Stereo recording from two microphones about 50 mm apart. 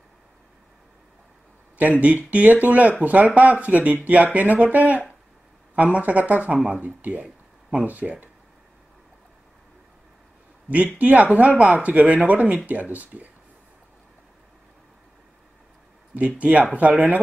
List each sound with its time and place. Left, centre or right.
1.8 s speech: right
11.0 s speech: right
16.2 s speech: right